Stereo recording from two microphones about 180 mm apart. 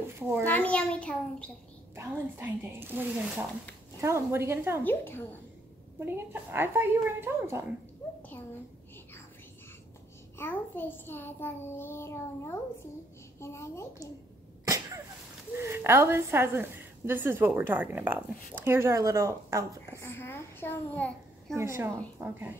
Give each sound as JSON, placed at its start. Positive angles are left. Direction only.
{"t": 0.2, "sound": "a woman's voice", "side_deg": -10}
{"t": 0.5, "sound": "a child's voice", "side_deg": 5}
{"t": 2.0, "sound": "a woman's voice", "side_deg": -10}
{"t": 4.8, "sound": "a child's voice", "side_deg": 10}
{"t": 5.9, "sound": "a woman's voice", "side_deg": -10}
{"t": 10.3, "sound": "a child's voice", "side_deg": 10}
{"t": 14.6, "sound": "cough", "side_deg": -15}
{"t": 15.5, "sound": "a woman's voice", "side_deg": -15}
{"t": 20.0, "sound": "a child's voice", "side_deg": 15}
{"t": 21.5, "sound": "a woman's voice", "side_deg": -15}